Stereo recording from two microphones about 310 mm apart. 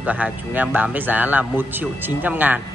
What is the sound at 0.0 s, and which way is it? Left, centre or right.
Speech, centre.